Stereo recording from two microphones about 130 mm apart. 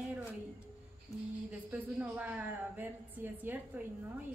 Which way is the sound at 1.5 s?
10° right (ahead or behind).